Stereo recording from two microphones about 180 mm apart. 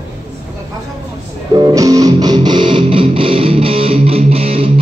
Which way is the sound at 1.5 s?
20° right (ahead or behind).